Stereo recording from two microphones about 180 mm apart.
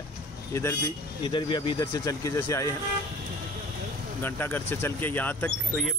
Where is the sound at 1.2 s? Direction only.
25° left (ahead or behind).